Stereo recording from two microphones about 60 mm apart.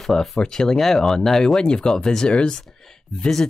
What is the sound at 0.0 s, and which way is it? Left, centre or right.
Speech, centre.